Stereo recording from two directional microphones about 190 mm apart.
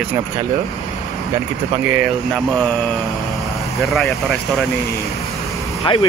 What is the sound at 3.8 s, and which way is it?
Speech, centre (ahead or behind).